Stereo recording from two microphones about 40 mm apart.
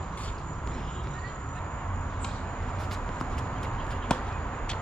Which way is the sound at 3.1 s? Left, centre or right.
Centre.